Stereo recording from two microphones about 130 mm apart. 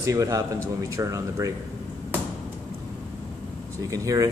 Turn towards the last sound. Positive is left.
turn(degrees=-25)  # may be behind; listen again after turning